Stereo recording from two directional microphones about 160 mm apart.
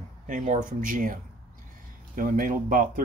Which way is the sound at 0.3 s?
55° right (ahead or behind).